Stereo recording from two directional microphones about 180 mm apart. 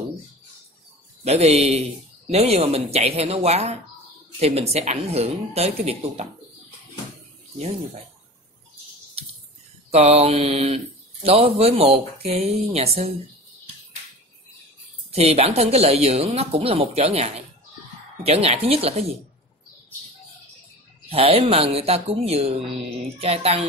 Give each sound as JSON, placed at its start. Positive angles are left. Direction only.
{"t": 1.2, "sound": "speech", "side_deg": -35}
{"t": 9.8, "sound": "speech", "side_deg": -35}
{"t": 15.0, "sound": "speech", "side_deg": -35}
{"t": 21.1, "sound": "speech", "side_deg": -30}